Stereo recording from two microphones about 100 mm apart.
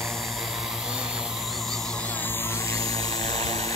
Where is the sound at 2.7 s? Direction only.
35° left (ahead or behind).